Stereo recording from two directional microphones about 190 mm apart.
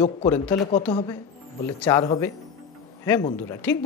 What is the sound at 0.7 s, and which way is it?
Speech, 35° left (ahead or behind).